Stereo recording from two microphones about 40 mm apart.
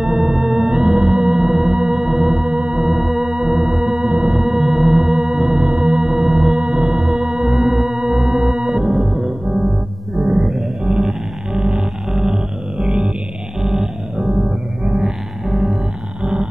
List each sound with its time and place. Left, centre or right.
0.0 s music: centre
6.8 s music: right
7.2 s music: centre
13.6 s music: centre
16.2 s a sound: right